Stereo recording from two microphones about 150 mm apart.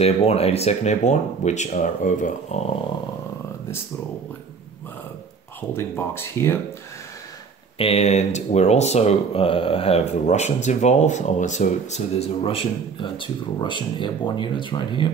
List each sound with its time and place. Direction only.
0.0 s speech: 45° left (ahead or behind)
5.7 s speech: 15° left (ahead or behind)
7.7 s speech: 40° left (ahead or behind)
12.4 s speech: 35° left (ahead or behind)